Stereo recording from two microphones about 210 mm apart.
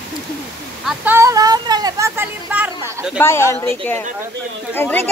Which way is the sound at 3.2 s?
10° left (ahead or behind).